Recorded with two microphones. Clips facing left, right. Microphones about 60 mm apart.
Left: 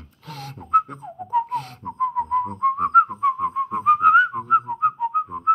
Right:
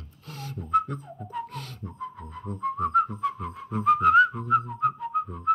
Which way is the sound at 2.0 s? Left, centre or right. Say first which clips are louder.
Left 18 dB; left.